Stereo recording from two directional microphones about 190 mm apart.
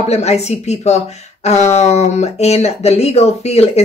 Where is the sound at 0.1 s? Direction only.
35° left (ahead or behind).